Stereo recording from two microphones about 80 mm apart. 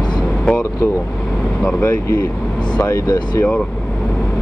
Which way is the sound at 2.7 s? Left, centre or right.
Left.